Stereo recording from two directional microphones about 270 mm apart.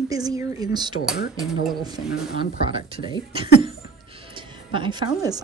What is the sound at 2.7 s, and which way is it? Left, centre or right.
A woman's voice, centre.